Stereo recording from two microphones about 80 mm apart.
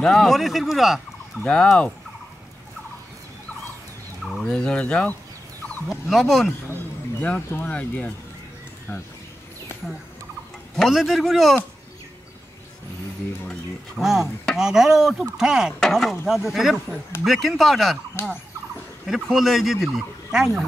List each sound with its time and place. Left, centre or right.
0.0 s speech: centre
1.4 s fowl: centre
4.2 s fowl: centre
5.9 s speech: centre
6.7 s speech: left
9.8 s speech: centre
13.9 s speech: centre
19.0 s speech: centre